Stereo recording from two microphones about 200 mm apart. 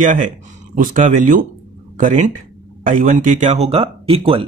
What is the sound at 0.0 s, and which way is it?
Speech, 40° right (ahead or behind).